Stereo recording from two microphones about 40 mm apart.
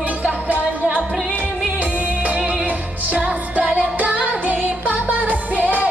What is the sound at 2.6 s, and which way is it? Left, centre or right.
Music, right.